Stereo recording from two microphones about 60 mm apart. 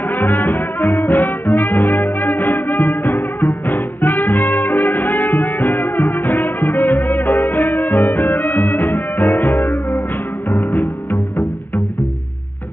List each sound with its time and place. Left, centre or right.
0.1 s music: left